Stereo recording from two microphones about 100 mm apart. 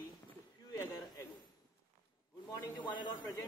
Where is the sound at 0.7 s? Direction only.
40° left (ahead or behind).